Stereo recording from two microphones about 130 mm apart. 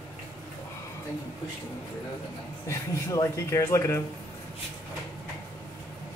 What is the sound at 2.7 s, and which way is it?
Speech, 25° left (ahead or behind).